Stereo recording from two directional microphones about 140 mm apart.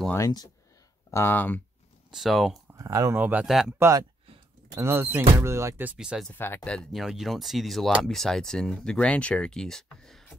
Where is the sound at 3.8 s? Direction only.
25° right (ahead or behind); by 6.3 s 5° right (ahead or behind).